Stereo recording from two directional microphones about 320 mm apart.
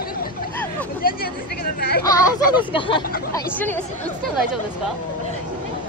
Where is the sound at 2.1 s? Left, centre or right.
Centre.